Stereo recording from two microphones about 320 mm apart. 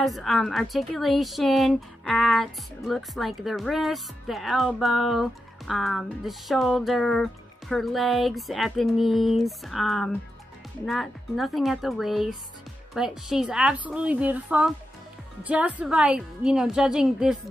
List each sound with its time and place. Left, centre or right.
0.0 s a woman's voice: centre